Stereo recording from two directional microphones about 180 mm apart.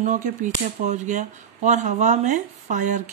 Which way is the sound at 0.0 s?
45° right (ahead or behind).